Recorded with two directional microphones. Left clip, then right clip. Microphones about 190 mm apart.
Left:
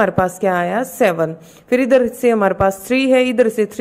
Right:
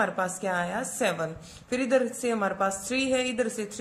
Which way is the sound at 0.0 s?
40° left (ahead or behind).